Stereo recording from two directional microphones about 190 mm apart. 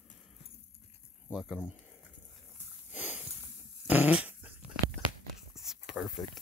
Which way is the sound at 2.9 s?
10° right (ahead or behind).